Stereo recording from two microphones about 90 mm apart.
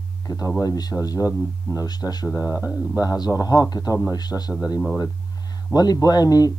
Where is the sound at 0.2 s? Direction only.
40° left (ahead or behind).